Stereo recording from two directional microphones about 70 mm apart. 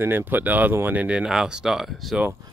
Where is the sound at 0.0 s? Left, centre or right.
Right; by 2.1 s centre.